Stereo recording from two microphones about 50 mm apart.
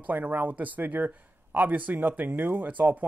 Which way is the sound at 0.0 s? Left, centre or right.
Right.